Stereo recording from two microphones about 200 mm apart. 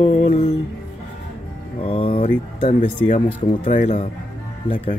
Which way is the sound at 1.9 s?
30° left (ahead or behind).